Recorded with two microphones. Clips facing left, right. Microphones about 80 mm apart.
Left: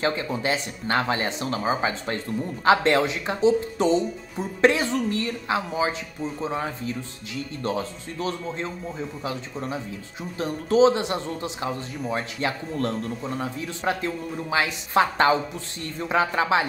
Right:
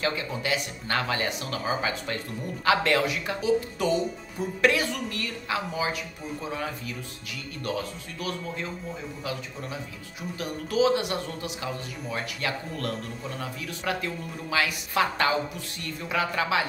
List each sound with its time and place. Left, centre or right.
0.0 s speech: left